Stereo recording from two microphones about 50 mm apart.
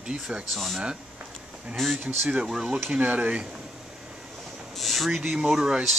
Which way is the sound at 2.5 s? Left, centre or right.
Centre.